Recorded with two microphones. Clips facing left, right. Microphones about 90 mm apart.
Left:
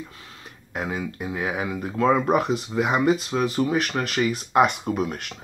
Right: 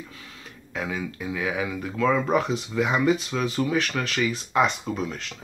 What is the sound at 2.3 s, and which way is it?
Speech, 50° left (ahead or behind).